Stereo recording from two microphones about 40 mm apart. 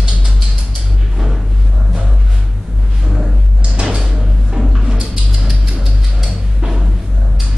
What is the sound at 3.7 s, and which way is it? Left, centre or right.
Music, right.